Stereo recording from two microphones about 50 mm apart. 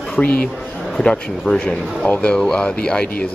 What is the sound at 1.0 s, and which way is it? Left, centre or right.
Speech, centre.